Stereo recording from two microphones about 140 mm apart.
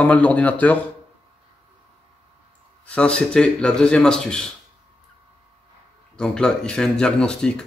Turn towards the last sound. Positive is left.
turn(degrees=5)  # may be behind; listen again after turning